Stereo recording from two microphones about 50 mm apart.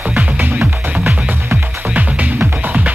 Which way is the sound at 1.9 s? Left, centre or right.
Right.